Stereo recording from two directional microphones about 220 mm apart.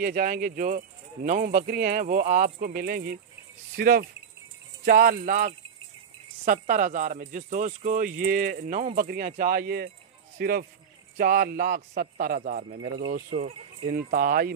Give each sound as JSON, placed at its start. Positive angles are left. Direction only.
{"t": 0.0, "sound": "speech", "side_deg": -40}
{"t": 13.8, "sound": "speech", "side_deg": -40}